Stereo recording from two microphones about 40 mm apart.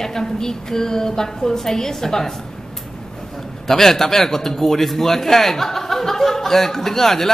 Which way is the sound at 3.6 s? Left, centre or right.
Centre.